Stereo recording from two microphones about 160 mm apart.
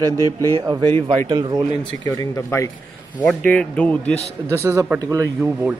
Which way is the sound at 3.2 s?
5° left (ahead or behind).